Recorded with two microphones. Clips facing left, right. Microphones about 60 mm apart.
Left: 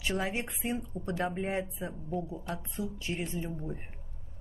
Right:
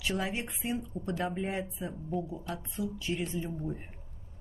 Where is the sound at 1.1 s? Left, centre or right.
Left.